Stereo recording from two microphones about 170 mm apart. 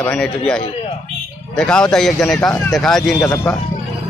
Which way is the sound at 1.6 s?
5° left (ahead or behind).